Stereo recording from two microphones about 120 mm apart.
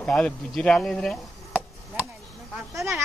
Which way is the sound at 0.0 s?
5° left (ahead or behind).